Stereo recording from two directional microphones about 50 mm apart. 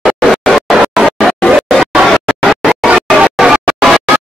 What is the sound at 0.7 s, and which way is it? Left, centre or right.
Music, centre.